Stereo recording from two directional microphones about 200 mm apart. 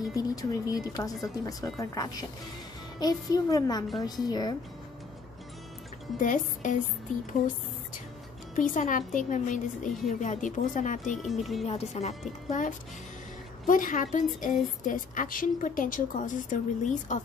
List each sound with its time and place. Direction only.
0.1 s a woman's voice: 20° left (ahead or behind)
6.1 s a woman's voice: 40° left (ahead or behind)
8.5 s a woman's voice: 40° left (ahead or behind)
11.2 s speech: centre (ahead or behind)
11.6 s a woman's voice: 30° left (ahead or behind)